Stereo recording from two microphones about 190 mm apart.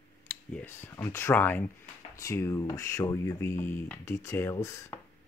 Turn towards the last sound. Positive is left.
turn(degrees=15)  # may be behind; listen again after turning